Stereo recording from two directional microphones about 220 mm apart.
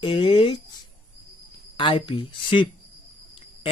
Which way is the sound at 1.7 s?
20° left (ahead or behind).